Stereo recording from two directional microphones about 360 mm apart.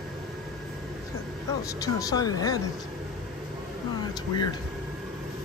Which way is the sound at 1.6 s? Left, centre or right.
Centre.